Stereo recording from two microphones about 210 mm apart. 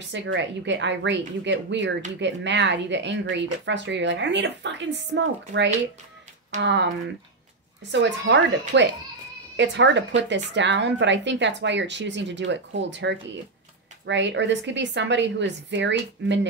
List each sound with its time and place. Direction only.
0.1 s speech: 55° right (ahead or behind)
7.9 s speech: 60° right (ahead or behind)